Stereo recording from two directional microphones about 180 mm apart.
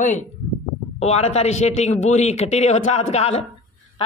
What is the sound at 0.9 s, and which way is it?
A man's voice, 35° left (ahead or behind).